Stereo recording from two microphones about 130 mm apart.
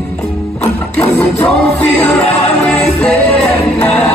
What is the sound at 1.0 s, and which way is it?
Music, 15° left (ahead or behind).